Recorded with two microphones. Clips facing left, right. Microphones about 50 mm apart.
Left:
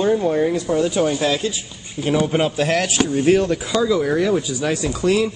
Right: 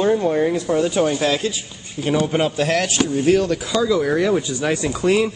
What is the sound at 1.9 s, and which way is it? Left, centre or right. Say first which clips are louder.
Speech: even; centre.